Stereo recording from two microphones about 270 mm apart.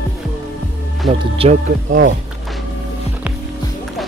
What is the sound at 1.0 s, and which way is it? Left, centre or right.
Speech, right.